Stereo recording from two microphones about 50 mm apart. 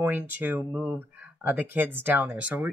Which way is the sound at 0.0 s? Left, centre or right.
Right.